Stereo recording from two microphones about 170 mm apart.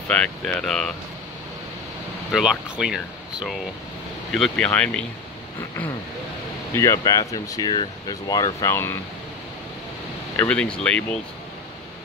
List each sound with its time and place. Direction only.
0.1 s speech: 5° left (ahead or behind)
2.3 s speech: 5° right (ahead or behind)
6.7 s speech: 15° left (ahead or behind)
10.3 s speech: 10° left (ahead or behind)